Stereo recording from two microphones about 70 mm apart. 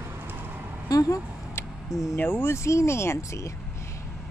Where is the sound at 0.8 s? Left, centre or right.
Left.